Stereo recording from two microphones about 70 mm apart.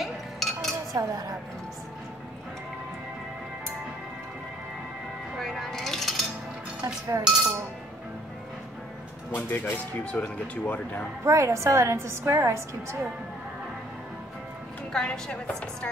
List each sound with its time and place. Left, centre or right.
0.0 s cutlery: centre
0.9 s speech: right
5.4 s music: centre
6.8 s a woman's voice: right
9.3 s speech: left
10.1 s speech: centre
11.2 s a woman's voice: right
14.9 s a woman's voice: centre